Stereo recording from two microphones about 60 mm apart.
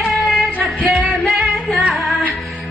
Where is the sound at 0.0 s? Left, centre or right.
Centre.